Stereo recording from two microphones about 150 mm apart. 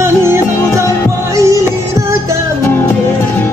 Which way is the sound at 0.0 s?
15° right (ahead or behind).